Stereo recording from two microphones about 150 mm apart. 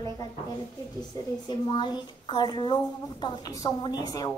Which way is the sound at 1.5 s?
30° left (ahead or behind).